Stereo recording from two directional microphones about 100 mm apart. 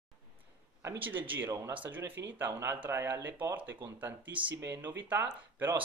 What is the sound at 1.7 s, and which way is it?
Speech, 15° right (ahead or behind).